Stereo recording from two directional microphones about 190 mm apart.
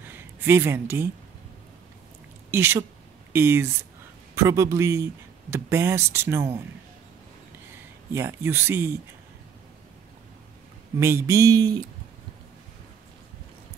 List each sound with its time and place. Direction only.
0.1 s speech: 10° right (ahead or behind)
2.5 s speech: 10° right (ahead or behind)
8.1 s speech: 15° right (ahead or behind)
11.0 s speech: 15° right (ahead or behind)